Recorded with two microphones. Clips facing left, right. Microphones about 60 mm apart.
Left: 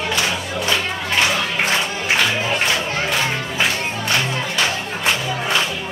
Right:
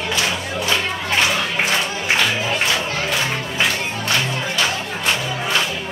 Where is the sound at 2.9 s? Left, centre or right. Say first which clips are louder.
Left 1 dB; centre.